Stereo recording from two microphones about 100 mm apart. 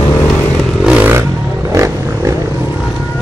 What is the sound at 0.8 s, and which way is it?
Vehicle, 10° right (ahead or behind).